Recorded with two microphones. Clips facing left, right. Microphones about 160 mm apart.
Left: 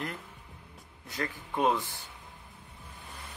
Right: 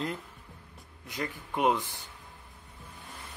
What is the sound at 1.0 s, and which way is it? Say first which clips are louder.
Speech: even; 15° right (ahead or behind).